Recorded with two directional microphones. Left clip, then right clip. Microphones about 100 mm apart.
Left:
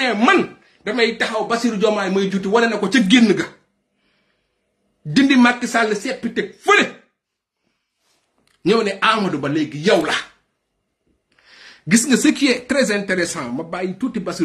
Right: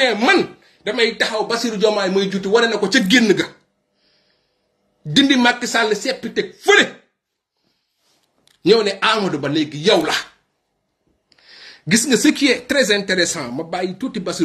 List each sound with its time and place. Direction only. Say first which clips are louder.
0.0 s speech: right 1 dB; 15° left (ahead or behind); by 3.4 s 35° left (ahead or behind)
5.1 s speech: even; 30° left (ahead or behind)
8.6 s speech: right 2 dB; 45° left (ahead or behind)
11.3 s a sound: right 3 dB; 45° left (ahead or behind)
11.9 s speech: right 1 dB; 35° left (ahead or behind); by 14.4 s 20° left (ahead or behind)